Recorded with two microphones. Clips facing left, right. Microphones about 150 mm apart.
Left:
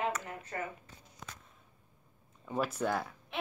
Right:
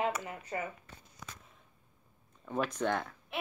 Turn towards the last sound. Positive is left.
turn(degrees=5)  # may be behind; listen again after turning